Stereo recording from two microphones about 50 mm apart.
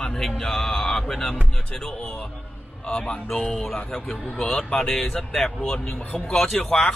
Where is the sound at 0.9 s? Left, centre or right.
Centre.